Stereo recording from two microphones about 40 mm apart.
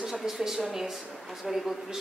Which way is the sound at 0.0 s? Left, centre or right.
Centre.